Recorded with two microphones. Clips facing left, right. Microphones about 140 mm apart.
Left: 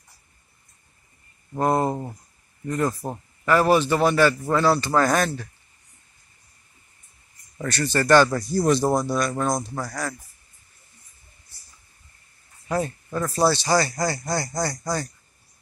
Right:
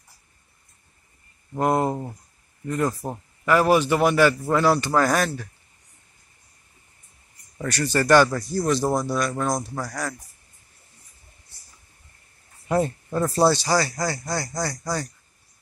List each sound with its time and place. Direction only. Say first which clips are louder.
1.6 s a man's voice: even; 5° right (ahead or behind)
3.4 s a man's voice: even; 10° right (ahead or behind)
7.6 s a man's voice: even; 10° right (ahead or behind)
8.3 s a man's voice: left 3 dB; 5° left (ahead or behind)
9.8 s speech: even; 5° left (ahead or behind)
12.6 s speech: right 3 dB; 25° right (ahead or behind)
13.5 s speech: even; 10° right (ahead or behind)